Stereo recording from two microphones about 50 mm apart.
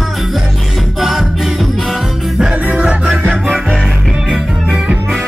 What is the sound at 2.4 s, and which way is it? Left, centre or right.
Music, right.